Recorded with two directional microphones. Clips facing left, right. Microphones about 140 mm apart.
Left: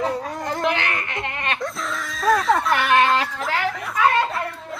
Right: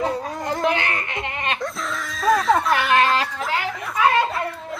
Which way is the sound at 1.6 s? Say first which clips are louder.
Even; centre (ahead or behind).